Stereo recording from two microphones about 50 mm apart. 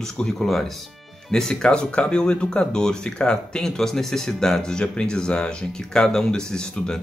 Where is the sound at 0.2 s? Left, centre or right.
Centre.